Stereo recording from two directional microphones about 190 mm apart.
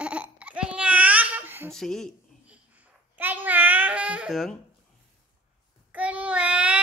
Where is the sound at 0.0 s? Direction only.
5° right (ahead or behind).